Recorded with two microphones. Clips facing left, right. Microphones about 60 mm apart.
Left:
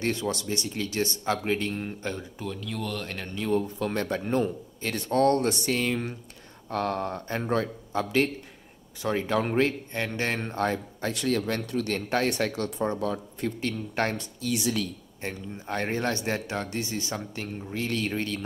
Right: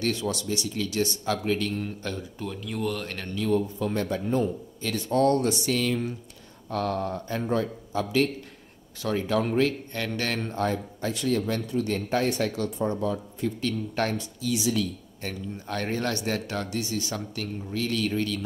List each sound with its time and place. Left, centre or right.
0.0 s speech: left
2.4 s speech: centre
3.3 s speech: left
3.8 s speech: left
10.5 s speech: left
11.6 s a man's voice: left
12.1 s speech: left
14.1 s speech: left
15.2 s speech: left